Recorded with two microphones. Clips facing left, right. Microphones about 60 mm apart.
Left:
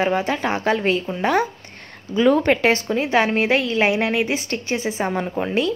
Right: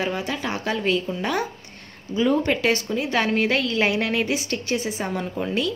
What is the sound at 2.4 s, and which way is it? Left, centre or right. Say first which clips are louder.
Speech: left 4 dB; left.